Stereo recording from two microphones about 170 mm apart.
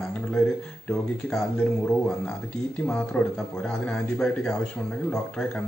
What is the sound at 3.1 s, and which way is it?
Speech, 10° left (ahead or behind).